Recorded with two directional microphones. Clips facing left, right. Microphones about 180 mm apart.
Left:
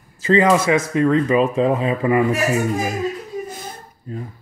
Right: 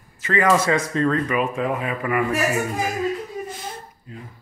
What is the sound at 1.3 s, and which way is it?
Speech, 25° left (ahead or behind).